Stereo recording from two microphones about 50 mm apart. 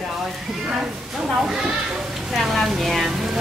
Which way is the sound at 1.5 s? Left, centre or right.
Centre.